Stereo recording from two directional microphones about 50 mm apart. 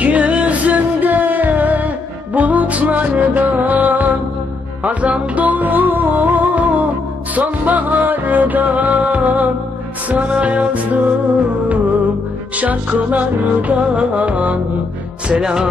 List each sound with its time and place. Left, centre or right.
0.0 s music: right
12.5 s music: right
15.4 s music: centre